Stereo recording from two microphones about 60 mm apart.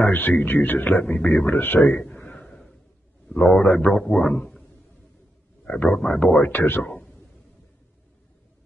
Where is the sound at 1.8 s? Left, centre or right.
Left.